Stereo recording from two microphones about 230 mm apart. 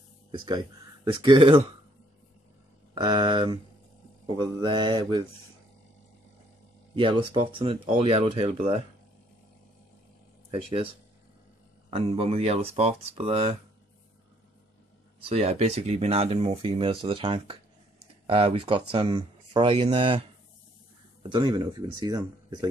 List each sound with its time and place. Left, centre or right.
0.3 s speech: centre
2.9 s speech: centre
7.0 s speech: right
10.5 s speech: right
15.1 s speech: right